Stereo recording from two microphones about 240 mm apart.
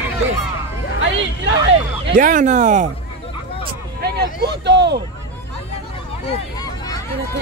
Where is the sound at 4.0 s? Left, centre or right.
Right.